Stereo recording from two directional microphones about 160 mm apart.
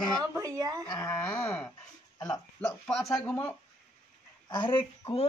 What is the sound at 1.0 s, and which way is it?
Wail, 10° left (ahead or behind).